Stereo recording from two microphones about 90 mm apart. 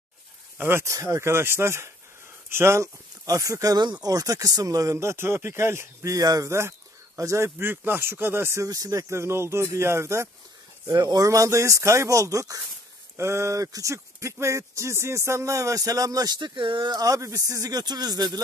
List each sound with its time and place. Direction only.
0.6 s speech: 25° right (ahead or behind)
3.8 s speech: 55° right (ahead or behind)
4.1 s speech: 40° right (ahead or behind)
6.1 s speech: 45° right (ahead or behind)
10.9 s speech: 45° right (ahead or behind)
11.2 s speech: 35° right (ahead or behind); by 16.9 s 70° right (ahead or behind)
16.9 s speech: 40° right (ahead or behind)